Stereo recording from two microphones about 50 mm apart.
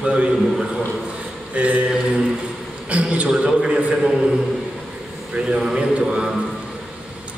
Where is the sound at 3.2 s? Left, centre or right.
Centre.